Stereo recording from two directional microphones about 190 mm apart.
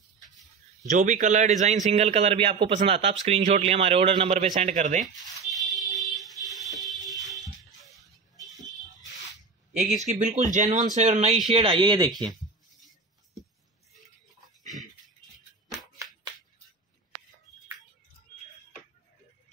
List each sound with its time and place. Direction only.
0.8 s speech: 40° right (ahead or behind)
5.0 s a sound: centre (ahead or behind)
9.9 s speech: 35° right (ahead or behind); by 12.1 s 20° right (ahead or behind)